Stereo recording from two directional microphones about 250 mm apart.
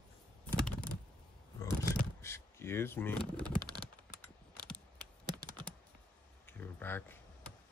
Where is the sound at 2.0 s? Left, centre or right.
Centre.